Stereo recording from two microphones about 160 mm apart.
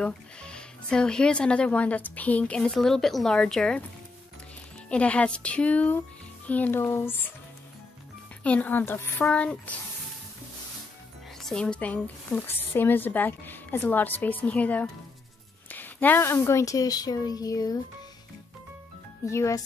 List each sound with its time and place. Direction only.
0.0 s speech: 5° left (ahead or behind)
4.8 s speech: 5° left (ahead or behind)
8.5 s speech: 10° left (ahead or behind)
11.4 s a woman's voice: 5° left (ahead or behind); by 17.7 s 25° left (ahead or behind)
19.2 s speech: 20° left (ahead or behind)